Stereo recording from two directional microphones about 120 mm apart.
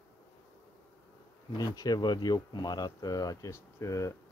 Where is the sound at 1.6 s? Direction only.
35° left (ahead or behind).